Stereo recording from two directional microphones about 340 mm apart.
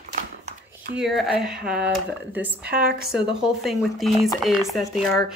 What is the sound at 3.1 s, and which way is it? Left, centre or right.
Speech, centre.